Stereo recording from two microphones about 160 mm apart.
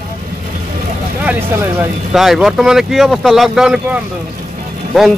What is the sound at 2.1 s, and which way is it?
Speech, centre (ahead or behind).